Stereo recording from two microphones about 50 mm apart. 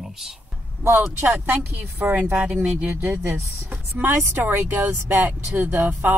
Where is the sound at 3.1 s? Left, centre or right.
Right.